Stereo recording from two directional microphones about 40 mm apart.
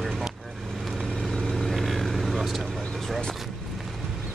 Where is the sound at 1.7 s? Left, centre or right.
Centre.